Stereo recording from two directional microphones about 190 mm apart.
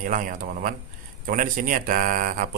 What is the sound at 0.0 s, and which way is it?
Speech, 45° right (ahead or behind).